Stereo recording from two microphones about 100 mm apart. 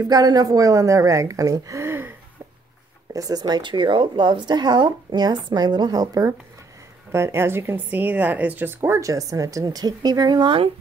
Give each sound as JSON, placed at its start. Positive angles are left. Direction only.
{"t": 0.0, "sound": "a woman's voice", "side_deg": -40}
{"t": 3.1, "sound": "speech", "side_deg": -35}
{"t": 7.1, "sound": "speech", "side_deg": -25}